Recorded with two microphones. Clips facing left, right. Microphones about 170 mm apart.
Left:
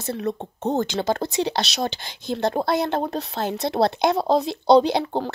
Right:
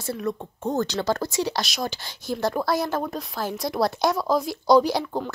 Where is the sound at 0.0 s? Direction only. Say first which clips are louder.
Left 2 dB; 25° left (ahead or behind).